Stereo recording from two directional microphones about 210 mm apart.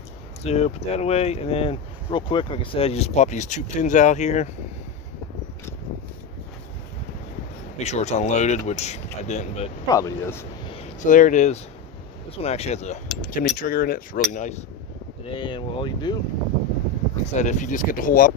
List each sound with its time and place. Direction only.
0.4 s speech: 30° left (ahead or behind)
7.7 s speech: 30° left (ahead or behind)
9.8 s speech: 15° left (ahead or behind)
11.0 s speech: 40° left (ahead or behind)
15.2 s speech: 25° left (ahead or behind)
17.1 s speech: 35° left (ahead or behind)